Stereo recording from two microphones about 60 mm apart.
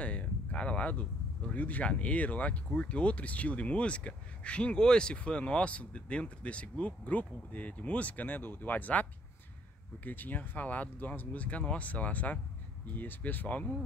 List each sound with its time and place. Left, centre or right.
0.0 s speech: left
10.0 s speech: left